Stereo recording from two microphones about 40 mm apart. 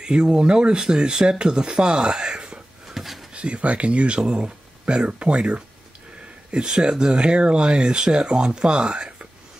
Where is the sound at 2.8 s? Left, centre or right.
Centre.